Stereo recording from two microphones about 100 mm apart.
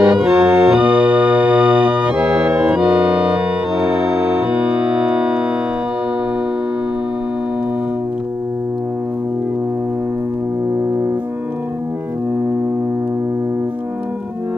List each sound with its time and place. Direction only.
0.0 s organ: 10° right (ahead or behind)
4.0 s organ: 30° right (ahead or behind)
4.3 s organ: 15° right (ahead or behind)